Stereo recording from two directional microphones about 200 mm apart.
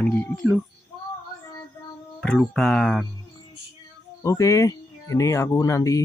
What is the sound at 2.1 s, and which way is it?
Speech, centre (ahead or behind).